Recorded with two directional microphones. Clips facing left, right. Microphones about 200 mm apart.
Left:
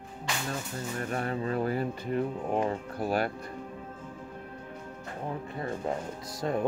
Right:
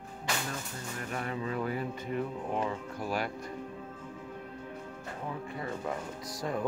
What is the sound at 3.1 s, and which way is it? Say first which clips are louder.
Speech: left 4 dB; 55° left (ahead or behind).